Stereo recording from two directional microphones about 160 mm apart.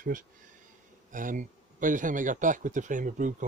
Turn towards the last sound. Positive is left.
turn(degrees=-55)  # may be behind; listen again after turning